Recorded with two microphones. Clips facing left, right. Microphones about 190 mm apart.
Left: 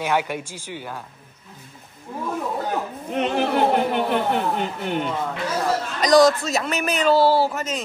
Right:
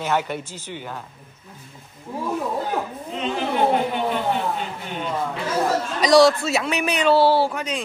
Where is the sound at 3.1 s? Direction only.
60° left (ahead or behind).